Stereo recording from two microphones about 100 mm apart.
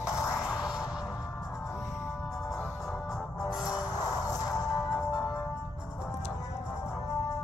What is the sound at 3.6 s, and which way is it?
Music, 35° left (ahead or behind).